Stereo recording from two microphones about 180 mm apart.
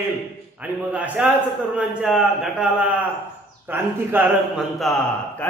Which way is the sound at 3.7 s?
10° right (ahead or behind).